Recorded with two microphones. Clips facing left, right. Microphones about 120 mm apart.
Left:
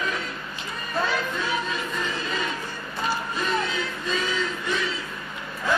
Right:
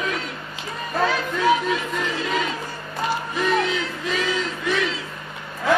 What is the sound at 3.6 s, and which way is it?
Music, 90° right.